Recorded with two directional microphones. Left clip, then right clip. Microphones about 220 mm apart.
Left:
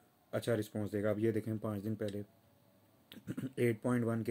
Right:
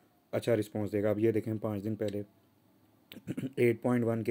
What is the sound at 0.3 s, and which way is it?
Speech, 15° right (ahead or behind).